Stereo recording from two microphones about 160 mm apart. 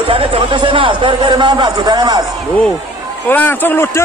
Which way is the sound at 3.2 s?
15° left (ahead or behind).